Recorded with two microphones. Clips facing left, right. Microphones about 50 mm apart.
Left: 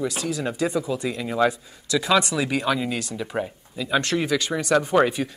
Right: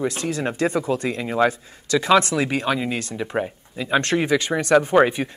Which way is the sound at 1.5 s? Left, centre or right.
Right.